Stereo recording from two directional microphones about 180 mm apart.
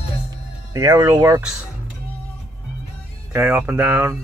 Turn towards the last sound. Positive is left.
turn(degrees=-15)  # may be behind; listen again after turning